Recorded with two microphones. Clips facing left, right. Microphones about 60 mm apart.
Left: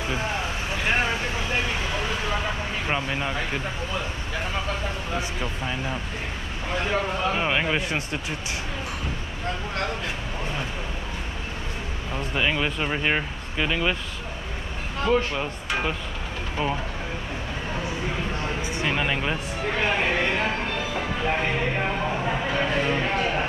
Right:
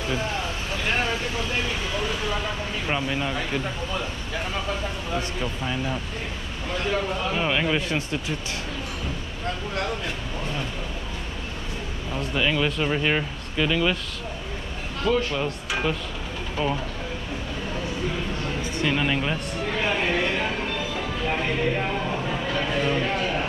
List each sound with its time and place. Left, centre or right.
0.0 s vehicle: centre
5.1 s speech: centre
12.1 s speech: centre
15.0 s speech: centre
16.6 s speech: centre
17.7 s a sound: centre
18.6 s speech: centre
19.6 s music: centre